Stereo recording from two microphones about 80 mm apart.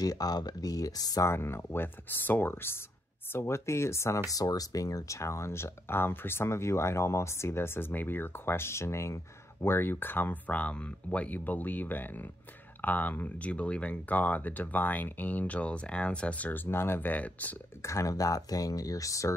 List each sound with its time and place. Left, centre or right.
0.0 s speech: left
1.2 s speech: left
16.7 s speech: left
17.8 s speech: left